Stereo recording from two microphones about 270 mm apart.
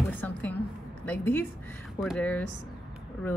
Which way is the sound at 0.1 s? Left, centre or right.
Centre.